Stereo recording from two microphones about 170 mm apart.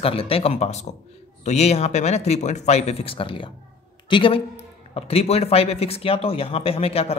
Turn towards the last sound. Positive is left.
turn(degrees=35)  # may be behind; listen again after turning